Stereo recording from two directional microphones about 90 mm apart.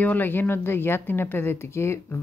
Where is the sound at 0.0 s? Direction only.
20° left (ahead or behind).